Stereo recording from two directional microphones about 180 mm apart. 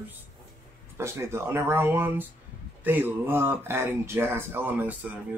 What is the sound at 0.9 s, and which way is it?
Speech, 15° right (ahead or behind).